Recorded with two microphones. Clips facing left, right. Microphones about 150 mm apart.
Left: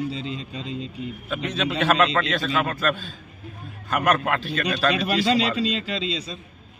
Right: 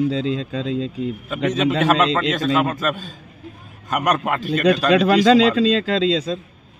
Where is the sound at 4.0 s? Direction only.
Centre (ahead or behind).